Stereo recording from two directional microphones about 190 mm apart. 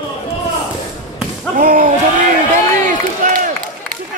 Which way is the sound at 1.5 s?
45° right (ahead or behind).